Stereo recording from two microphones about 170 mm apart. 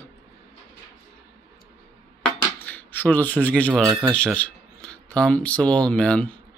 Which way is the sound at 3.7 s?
15° right (ahead or behind).